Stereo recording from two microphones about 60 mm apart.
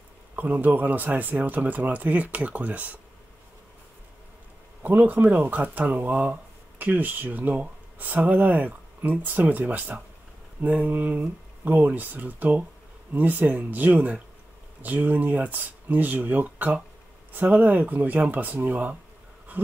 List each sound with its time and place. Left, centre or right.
0.4 s speech: right
4.8 s speech: right